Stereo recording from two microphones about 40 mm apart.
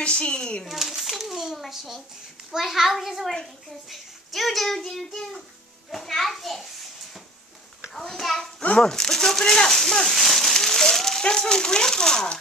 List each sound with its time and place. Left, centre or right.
0.0 s a child's voice: left
0.7 s speech: centre
7.9 s a child's voice: centre
10.1 s a sound: centre
11.2 s speech: centre